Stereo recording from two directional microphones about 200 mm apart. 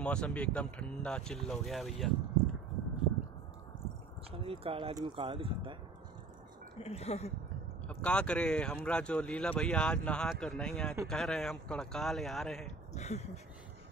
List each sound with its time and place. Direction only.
0.0 s speech: 5° left (ahead or behind)
4.3 s speech: 30° right (ahead or behind)
6.8 s speech: 30° left (ahead or behind)
7.9 s speech: 5° left (ahead or behind)
12.9 s speech: 35° left (ahead or behind)